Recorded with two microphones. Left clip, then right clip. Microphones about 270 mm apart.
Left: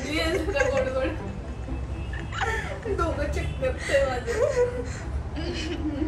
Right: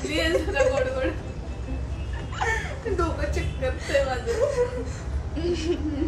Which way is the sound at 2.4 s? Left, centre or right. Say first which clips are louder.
Right 2 dB; centre.